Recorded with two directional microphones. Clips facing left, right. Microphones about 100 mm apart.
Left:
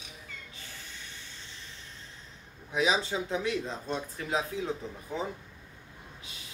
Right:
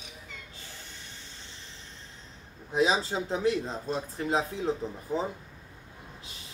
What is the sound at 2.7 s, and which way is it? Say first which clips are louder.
Speech: right 2 dB; 35° right (ahead or behind).